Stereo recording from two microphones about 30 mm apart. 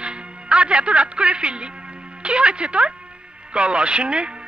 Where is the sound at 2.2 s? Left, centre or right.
Right.